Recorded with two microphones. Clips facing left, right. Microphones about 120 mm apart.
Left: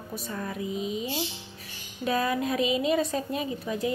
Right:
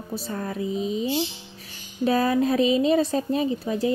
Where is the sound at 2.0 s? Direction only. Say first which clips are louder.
Right 6 dB; 35° right (ahead or behind).